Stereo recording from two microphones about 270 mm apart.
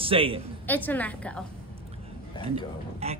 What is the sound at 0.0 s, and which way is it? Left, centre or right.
Speech, centre.